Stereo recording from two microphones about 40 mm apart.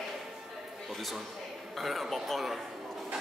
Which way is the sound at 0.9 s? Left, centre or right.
Centre.